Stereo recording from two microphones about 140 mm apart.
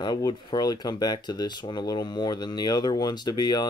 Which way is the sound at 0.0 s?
30° left (ahead or behind).